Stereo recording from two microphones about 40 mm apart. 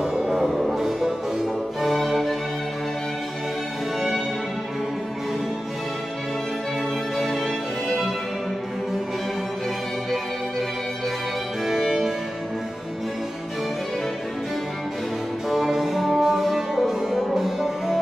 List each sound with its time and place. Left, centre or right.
0.0 s music: centre
0.5 s music: centre
7.2 s music: centre
15.5 s music: centre